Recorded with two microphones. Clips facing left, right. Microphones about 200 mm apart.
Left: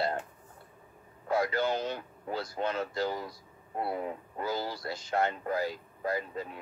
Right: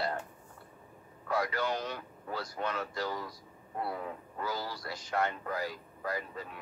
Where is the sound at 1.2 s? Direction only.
25° left (ahead or behind).